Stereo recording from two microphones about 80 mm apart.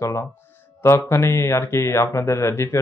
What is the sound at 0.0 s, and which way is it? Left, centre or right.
Speech, left.